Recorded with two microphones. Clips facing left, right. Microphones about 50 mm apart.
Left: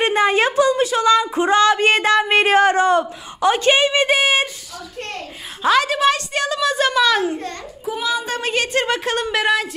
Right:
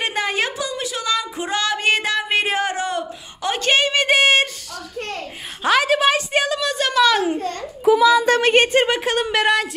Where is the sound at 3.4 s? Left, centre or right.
Left.